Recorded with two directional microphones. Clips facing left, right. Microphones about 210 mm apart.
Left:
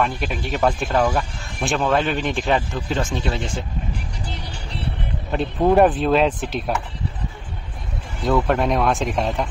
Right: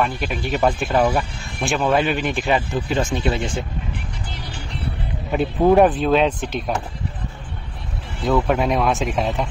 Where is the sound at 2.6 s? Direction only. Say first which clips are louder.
Right 2 dB; 15° right (ahead or behind).